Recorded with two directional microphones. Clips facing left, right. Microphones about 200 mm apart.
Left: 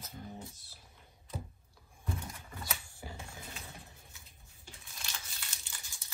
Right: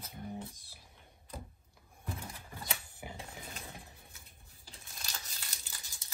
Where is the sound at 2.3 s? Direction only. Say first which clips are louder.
Even; 25° right (ahead or behind).